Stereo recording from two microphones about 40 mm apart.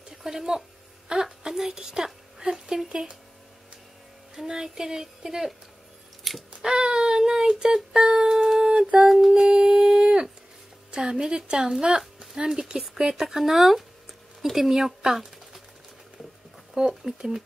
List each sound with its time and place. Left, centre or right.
0.1 s a woman's voice: centre
4.4 s a woman's voice: centre
6.5 s a sound: centre
8.5 s humming: centre
9.3 s a sound: centre
10.9 s a woman's voice: right
16.7 s a woman's voice: centre